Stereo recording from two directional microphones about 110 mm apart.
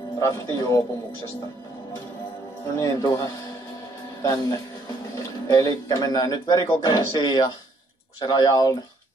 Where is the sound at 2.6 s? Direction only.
30° left (ahead or behind).